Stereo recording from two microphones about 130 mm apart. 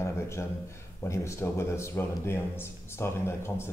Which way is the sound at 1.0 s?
20° left (ahead or behind).